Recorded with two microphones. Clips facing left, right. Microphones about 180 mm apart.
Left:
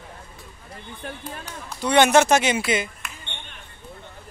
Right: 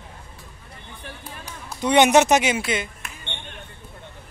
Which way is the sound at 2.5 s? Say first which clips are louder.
Left 1 dB; centre (ahead or behind).